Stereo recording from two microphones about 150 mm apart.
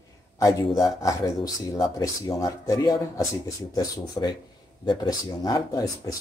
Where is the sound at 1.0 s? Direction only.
25° left (ahead or behind).